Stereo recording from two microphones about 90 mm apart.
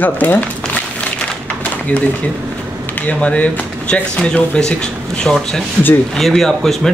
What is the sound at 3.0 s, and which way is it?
Speech, 15° left (ahead or behind).